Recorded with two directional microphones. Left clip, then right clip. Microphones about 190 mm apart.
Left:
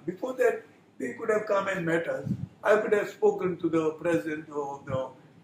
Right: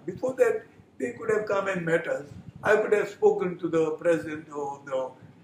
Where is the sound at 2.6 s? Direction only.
10° right (ahead or behind).